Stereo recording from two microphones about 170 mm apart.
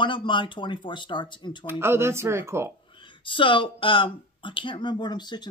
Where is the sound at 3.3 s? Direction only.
30° left (ahead or behind).